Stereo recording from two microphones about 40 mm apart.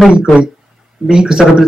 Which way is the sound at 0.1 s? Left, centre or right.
Right.